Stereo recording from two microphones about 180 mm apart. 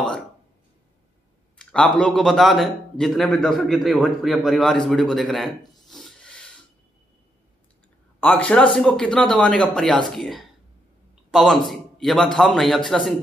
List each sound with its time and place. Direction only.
1.6 s a man's voice: 5° left (ahead or behind)
5.9 s filing: centre (ahead or behind)
8.2 s a man's voice: 10° left (ahead or behind)